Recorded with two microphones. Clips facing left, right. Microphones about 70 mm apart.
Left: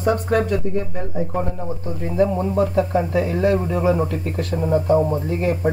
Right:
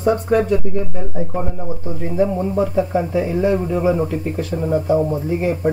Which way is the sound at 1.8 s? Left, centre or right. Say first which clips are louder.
Right 1 dB; centre.